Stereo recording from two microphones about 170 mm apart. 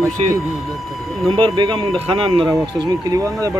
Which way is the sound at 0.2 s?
40° right (ahead or behind).